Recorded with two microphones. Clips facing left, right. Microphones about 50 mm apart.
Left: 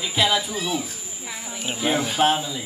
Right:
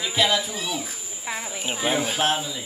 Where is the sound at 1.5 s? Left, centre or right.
Centre.